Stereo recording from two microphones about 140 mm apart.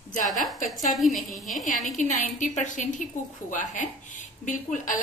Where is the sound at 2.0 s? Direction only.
65° left (ahead or behind).